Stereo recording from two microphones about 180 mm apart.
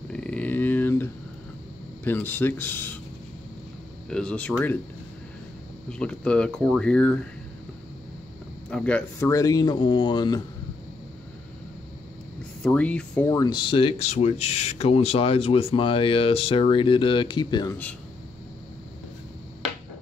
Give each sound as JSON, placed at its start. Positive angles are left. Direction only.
{"t": 0.1, "sound": "a sound", "side_deg": 5}
{"t": 2.0, "sound": "speech", "side_deg": 10}
{"t": 4.1, "sound": "speech", "side_deg": 5}
{"t": 5.9, "sound": "speech", "side_deg": 5}
{"t": 8.6, "sound": "speech", "side_deg": 5}
{"t": 9.3, "sound": "speech", "side_deg": 20}
{"t": 12.6, "sound": "speech", "side_deg": 5}
{"t": 13.3, "sound": "speech", "side_deg": 20}